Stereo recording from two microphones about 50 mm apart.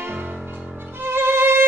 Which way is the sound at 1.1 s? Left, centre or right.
Right.